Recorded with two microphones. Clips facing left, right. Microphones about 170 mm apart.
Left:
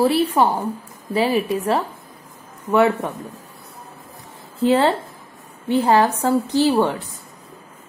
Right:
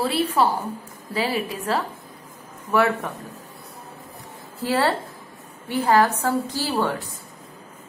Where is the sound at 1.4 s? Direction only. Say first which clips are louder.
Left 5 dB; 25° left (ahead or behind).